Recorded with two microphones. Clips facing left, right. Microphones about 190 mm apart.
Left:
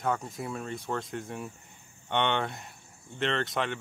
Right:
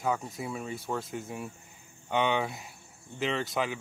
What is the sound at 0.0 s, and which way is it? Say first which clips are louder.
Cricket: even; centre (ahead or behind).